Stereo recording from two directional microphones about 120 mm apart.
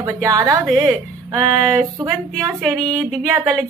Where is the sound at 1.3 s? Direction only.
30° right (ahead or behind).